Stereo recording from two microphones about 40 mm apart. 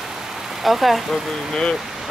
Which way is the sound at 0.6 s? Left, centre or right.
Centre.